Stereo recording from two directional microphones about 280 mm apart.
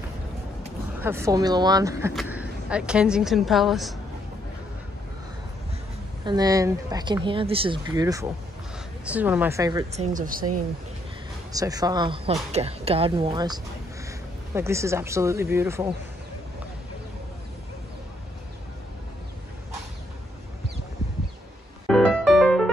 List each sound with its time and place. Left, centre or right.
1.0 s speech: centre
6.2 s speech: centre
9.9 s speech: right
11.5 s speech: centre
21.8 s music: centre